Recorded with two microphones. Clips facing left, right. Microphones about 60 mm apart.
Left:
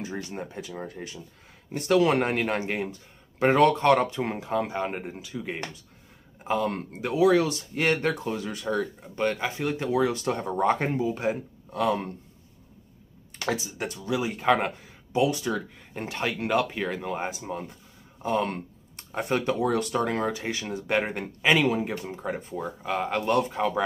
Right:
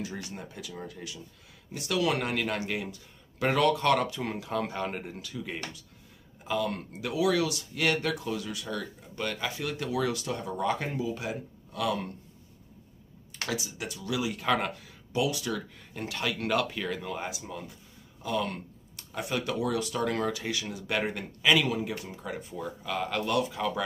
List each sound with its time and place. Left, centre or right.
0.0 s speech: left
6.4 s speech: left
13.5 s speech: left